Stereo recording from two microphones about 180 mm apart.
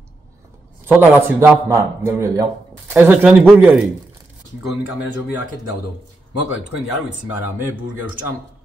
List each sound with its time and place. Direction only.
0.8 s a man's voice: 10° right (ahead or behind)